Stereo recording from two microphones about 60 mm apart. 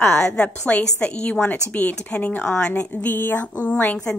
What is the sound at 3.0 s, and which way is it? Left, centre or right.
Speech, left.